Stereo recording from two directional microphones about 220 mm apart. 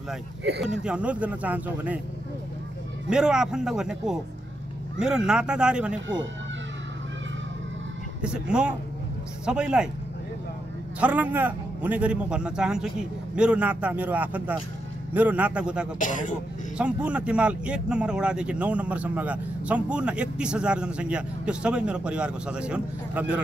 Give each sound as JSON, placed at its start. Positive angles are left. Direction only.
{"t": 0.8, "sound": "speech", "side_deg": -5}
{"t": 3.1, "sound": "speech", "side_deg": -5}
{"t": 8.2, "sound": "speech", "side_deg": -5}
{"t": 11.0, "sound": "a man's voice", "side_deg": -5}
{"t": 16.0, "sound": "speech", "side_deg": 35}
{"t": 16.7, "sound": "speech", "side_deg": -5}